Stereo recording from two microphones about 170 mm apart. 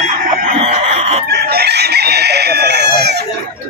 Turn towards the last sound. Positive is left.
turn(degrees=-75)  # may be behind; listen again after turning